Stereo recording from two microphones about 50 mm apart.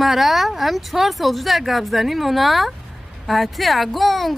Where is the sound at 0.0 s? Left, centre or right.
Centre.